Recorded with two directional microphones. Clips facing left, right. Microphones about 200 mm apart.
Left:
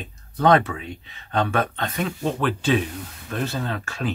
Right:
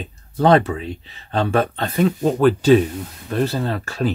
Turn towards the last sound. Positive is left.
turn(degrees=-35)  # may be behind; listen again after turning